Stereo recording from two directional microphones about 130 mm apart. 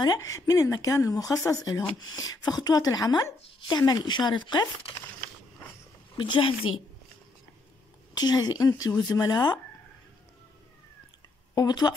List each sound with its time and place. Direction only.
0.0 s a woman's voice: 30° left (ahead or behind)
6.1 s a woman's voice: 40° left (ahead or behind)
8.1 s a woman's voice: 30° left (ahead or behind)
11.5 s speech: 30° left (ahead or behind)